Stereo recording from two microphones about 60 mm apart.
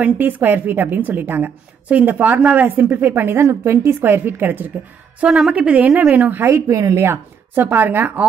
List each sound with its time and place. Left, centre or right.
0.0 s a woman's voice: right
5.5 s speech: right
6.4 s a woman's voice: right
7.0 s a woman's voice: right